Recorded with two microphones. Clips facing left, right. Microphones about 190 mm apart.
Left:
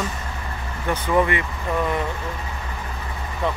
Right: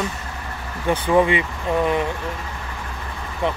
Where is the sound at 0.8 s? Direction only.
20° right (ahead or behind).